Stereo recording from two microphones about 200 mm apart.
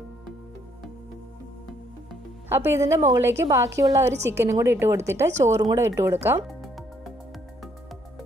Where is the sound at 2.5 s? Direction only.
15° right (ahead or behind).